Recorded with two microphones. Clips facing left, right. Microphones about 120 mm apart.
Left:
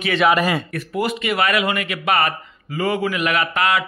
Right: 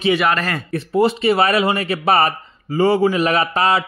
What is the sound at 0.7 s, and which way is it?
A man's voice, 30° right (ahead or behind).